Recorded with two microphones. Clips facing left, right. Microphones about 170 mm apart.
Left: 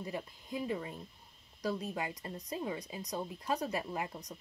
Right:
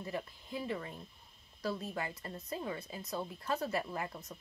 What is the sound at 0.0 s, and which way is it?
Speech, 15° left (ahead or behind).